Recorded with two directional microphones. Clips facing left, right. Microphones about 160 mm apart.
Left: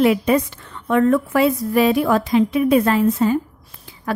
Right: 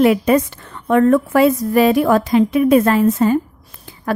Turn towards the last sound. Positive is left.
turn(degrees=-45)  # may be behind; listen again after turning